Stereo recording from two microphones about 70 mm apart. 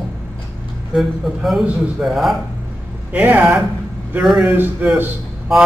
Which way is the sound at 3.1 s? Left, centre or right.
Right.